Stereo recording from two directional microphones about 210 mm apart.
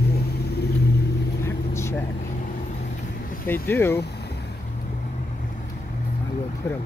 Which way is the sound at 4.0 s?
50° left (ahead or behind).